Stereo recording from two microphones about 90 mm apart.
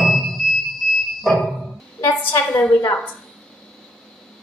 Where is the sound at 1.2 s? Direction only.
5° left (ahead or behind).